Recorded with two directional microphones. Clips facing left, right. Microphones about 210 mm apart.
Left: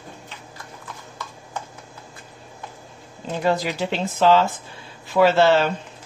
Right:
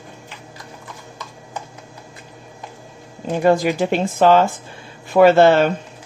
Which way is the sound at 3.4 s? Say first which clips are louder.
Right 6 dB; 50° right (ahead or behind).